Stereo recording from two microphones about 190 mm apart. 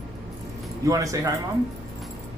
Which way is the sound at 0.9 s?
15° right (ahead or behind).